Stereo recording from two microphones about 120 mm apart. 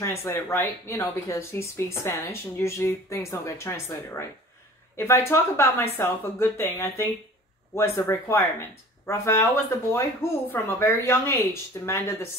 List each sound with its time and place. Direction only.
0.0 s speech: 20° left (ahead or behind)